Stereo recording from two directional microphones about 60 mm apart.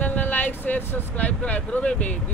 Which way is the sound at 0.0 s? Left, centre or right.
Left.